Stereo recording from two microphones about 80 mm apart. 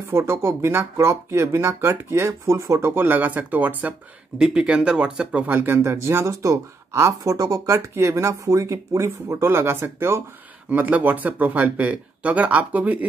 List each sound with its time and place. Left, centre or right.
0.1 s speech: right; by 5.4 s centre
5.5 s speech: right
7.9 s speech: right
10.7 s speech: centre